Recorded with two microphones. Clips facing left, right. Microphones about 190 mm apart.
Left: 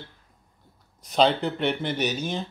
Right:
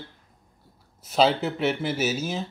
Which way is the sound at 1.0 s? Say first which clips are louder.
Even; 5° right (ahead or behind).